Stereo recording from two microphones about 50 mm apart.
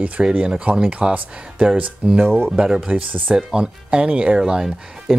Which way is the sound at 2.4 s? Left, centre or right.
Centre.